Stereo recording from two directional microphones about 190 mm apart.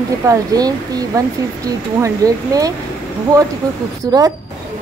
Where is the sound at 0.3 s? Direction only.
20° right (ahead or behind).